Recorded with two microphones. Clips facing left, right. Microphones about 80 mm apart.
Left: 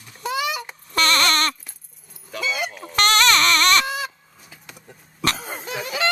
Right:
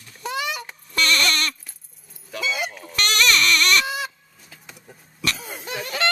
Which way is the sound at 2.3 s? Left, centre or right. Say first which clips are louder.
Even; centre.